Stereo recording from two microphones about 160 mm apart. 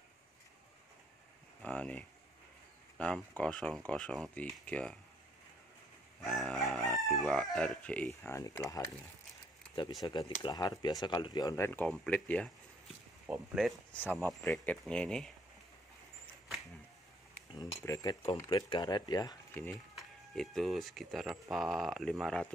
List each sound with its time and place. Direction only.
1.6 s speech: 10° left (ahead or behind)
6.2 s speech: centre (ahead or behind)
8.2 s speech: 20° left (ahead or behind)
10.0 s speech: 25° left (ahead or behind); by 15.3 s 5° left (ahead or behind)
17.6 s speech: 20° left (ahead or behind)
19.7 s speech: centre (ahead or behind)